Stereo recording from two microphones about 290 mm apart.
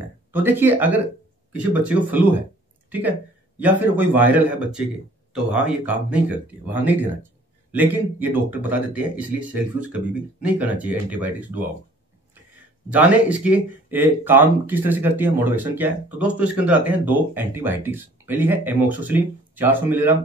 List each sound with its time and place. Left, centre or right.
0.3 s speech: centre
12.9 s speech: centre